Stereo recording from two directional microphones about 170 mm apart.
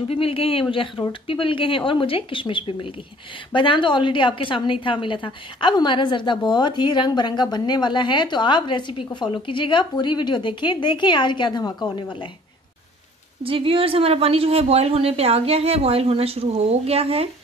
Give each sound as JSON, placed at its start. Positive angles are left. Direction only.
{"t": 0.1, "sound": "a woman's voice", "side_deg": 35}
{"t": 13.4, "sound": "speech", "side_deg": -30}